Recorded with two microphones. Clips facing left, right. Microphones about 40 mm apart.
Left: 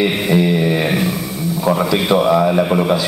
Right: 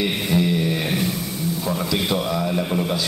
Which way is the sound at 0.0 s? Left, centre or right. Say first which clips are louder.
Left 6 dB; left.